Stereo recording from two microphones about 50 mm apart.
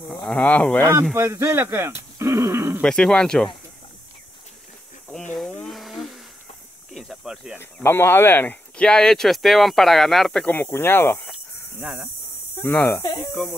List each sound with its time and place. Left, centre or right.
0.1 s a sound: centre
0.4 s speech: left
1.1 s speech: right
2.1 s a sound: right
2.8 s speech: centre
5.1 s a sound: centre
6.9 s cricket: centre
7.8 s speech: left
8.7 s speech: centre
10.5 s speech: left
11.8 s speech: centre
12.5 s speech: left